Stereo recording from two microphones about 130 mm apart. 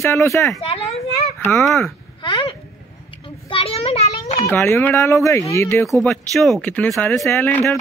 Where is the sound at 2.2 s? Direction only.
40° left (ahead or behind).